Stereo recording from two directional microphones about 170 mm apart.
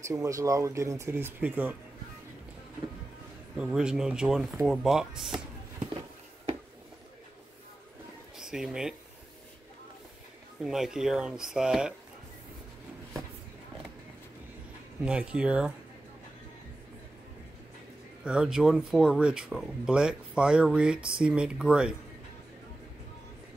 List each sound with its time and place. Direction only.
0.0 s speech: 20° right (ahead or behind)
3.5 s speech: 5° right (ahead or behind)
8.4 s speech: 5° right (ahead or behind)
10.6 s speech: centre (ahead or behind)
15.0 s speech: 5° right (ahead or behind)
18.2 s speech: 5° right (ahead or behind)